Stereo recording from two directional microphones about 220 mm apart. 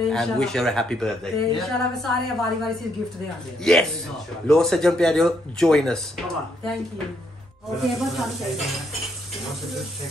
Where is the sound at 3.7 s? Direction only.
Centre (ahead or behind).